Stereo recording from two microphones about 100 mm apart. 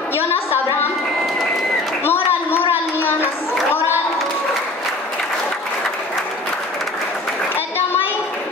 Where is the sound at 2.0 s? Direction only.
20° left (ahead or behind).